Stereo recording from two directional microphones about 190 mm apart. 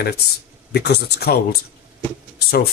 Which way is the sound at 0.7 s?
60° left (ahead or behind).